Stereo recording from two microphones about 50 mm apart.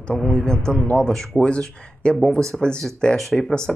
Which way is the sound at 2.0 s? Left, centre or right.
Left.